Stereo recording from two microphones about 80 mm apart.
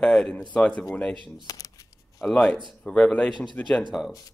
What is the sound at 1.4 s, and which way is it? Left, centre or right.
Shuffling cards, left.